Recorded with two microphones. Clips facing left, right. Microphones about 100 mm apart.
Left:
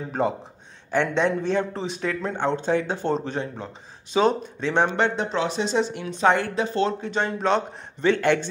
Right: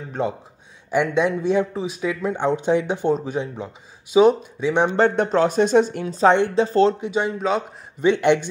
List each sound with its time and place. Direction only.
0.2 s a man's voice: centre (ahead or behind)
0.9 s a man's voice: 10° right (ahead or behind)
5.1 s a woman's voice: 50° right (ahead or behind); by 7.0 s 35° right (ahead or behind)
7.0 s a man's voice: 10° right (ahead or behind)
8.0 s a man's voice: 20° right (ahead or behind)